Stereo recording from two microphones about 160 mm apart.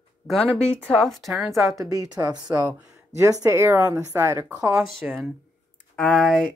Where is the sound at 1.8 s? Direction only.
20° right (ahead or behind).